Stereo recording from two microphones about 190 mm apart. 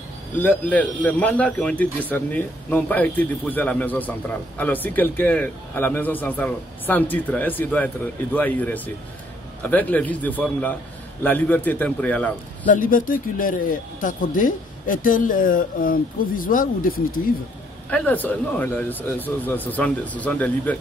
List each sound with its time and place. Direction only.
0.4 s speech: 10° left (ahead or behind)
12.6 s speech: 45° left (ahead or behind)
17.8 s speech: 10° left (ahead or behind)